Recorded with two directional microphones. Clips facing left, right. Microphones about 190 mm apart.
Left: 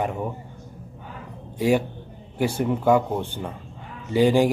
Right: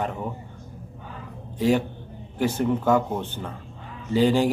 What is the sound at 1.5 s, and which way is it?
Speech, 10° left (ahead or behind).